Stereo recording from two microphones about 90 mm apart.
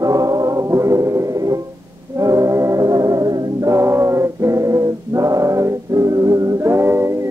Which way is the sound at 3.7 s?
30° right (ahead or behind).